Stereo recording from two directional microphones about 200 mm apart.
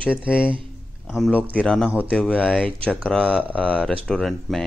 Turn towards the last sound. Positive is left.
turn(degrees=0)  # may be behind; listen again after turning